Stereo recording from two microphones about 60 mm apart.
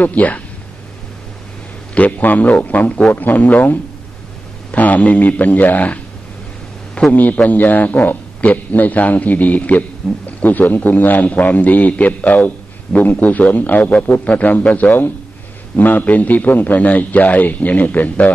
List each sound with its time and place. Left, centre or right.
0.0 s a man's voice: left
2.0 s a man's voice: left
7.1 s a man's voice: left